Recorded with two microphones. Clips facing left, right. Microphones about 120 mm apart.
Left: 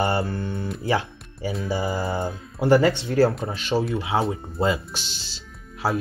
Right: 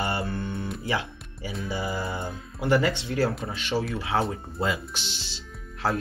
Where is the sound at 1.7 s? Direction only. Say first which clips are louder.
Left 4 dB; 30° left (ahead or behind).